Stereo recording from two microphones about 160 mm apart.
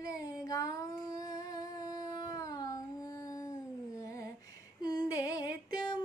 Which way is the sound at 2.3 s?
20° left (ahead or behind).